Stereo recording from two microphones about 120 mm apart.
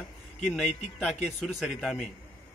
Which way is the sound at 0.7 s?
70° left (ahead or behind).